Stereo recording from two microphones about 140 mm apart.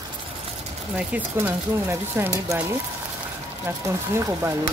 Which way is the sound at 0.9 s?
15° right (ahead or behind).